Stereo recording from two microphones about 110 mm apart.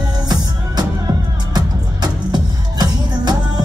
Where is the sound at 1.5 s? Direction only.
40° right (ahead or behind).